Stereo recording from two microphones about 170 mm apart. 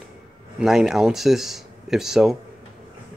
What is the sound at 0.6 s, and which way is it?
Speech, 5° right (ahead or behind).